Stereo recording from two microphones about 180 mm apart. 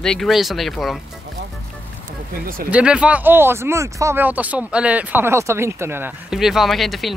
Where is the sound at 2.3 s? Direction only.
55° right (ahead or behind).